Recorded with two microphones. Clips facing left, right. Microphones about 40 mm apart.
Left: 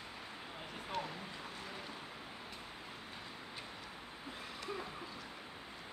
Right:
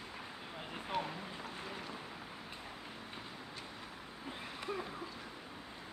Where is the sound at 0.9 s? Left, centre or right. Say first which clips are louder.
Right 3 dB; centre.